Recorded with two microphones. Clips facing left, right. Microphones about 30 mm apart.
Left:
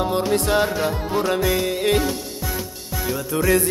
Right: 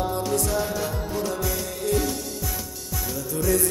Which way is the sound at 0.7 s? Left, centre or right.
Left.